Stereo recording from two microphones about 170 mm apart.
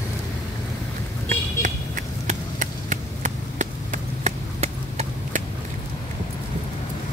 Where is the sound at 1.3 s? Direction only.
50° right (ahead or behind).